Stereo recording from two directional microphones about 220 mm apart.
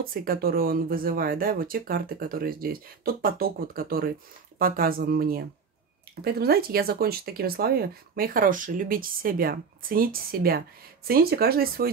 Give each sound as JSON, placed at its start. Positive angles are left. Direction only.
{"t": 0.0, "sound": "speech", "side_deg": -40}